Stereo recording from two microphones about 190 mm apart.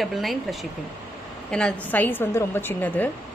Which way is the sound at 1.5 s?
5° left (ahead or behind).